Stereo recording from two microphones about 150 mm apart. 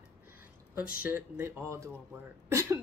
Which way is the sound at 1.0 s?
10° right (ahead or behind).